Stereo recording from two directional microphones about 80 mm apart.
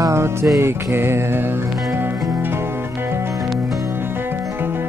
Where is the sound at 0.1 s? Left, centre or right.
Right.